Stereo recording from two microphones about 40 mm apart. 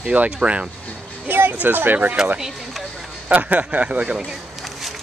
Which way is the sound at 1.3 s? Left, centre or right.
Right.